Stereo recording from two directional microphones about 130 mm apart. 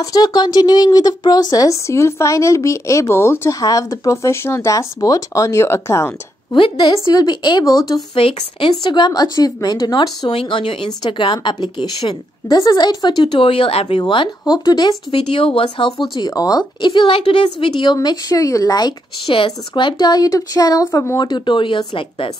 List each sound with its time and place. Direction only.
0.0 s a woman's voice: 30° left (ahead or behind)
6.5 s speech: 35° left (ahead or behind)
8.1 s speech: 45° left (ahead or behind)
15.1 s speech: 45° left (ahead or behind)
16.2 s speech: 30° left (ahead or behind)
17.9 s a woman's voice: 30° left (ahead or behind)
19.2 s speech: 40° left (ahead or behind); by 21.3 s 25° left (ahead or behind)
21.3 s speech: 40° left (ahead or behind)